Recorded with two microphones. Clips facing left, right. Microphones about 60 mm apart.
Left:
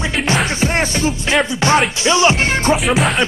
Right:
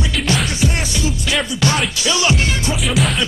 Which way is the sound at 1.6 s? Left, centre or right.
Left.